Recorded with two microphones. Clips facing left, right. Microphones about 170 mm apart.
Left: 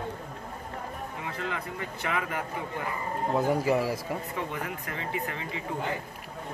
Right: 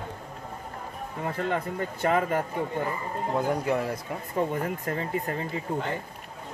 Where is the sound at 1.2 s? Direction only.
45° right (ahead or behind).